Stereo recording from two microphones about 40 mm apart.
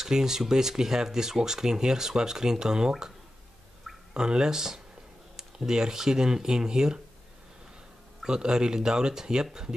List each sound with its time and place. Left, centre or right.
0.0 s speech: centre
4.1 s speech: right
8.3 s speech: centre